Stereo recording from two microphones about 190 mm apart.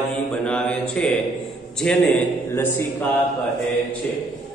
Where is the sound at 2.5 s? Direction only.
10° left (ahead or behind).